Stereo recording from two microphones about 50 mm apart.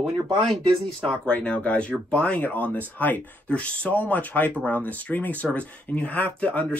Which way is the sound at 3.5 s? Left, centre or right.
Left.